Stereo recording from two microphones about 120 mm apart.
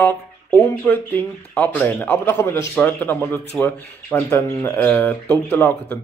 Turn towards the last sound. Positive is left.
turn(degrees=15)  # may be behind; listen again after turning